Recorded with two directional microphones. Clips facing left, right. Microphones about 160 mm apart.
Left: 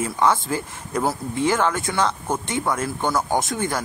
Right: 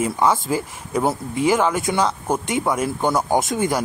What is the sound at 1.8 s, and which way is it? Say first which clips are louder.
Speech: right 2 dB; 20° right (ahead or behind).